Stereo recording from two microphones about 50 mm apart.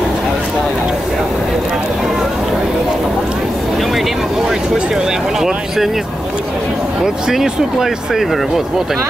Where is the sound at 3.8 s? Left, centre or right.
Centre.